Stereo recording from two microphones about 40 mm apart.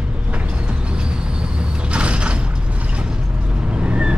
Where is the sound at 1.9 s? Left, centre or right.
Right.